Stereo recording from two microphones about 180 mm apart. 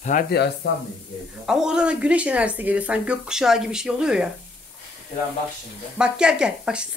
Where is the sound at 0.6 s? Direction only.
75° left (ahead or behind).